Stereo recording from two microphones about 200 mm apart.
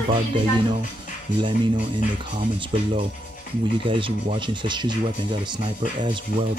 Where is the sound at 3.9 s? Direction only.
25° right (ahead or behind).